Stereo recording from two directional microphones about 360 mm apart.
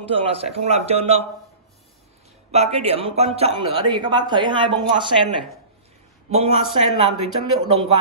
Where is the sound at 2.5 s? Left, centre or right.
Centre.